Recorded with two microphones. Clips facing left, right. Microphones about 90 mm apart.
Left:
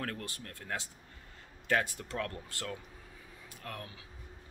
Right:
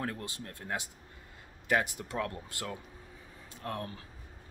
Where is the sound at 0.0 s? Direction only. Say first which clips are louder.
Right 2 dB; 20° right (ahead or behind).